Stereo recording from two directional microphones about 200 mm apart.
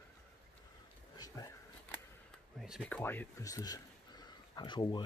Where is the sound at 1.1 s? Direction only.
20° left (ahead or behind).